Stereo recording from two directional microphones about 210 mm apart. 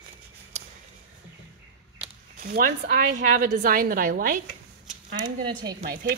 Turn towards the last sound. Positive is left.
turn(degrees=-40)  # may be behind; listen again after turning